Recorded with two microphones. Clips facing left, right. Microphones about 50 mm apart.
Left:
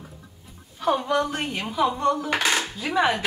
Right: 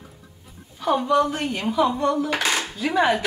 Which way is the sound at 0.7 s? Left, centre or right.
Centre.